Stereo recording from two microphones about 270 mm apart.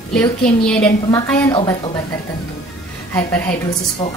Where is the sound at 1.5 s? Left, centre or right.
Centre.